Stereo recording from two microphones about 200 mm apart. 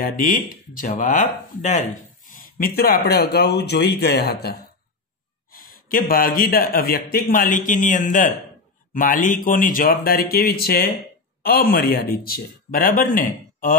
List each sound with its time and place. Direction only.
0.0 s speech: 45° left (ahead or behind)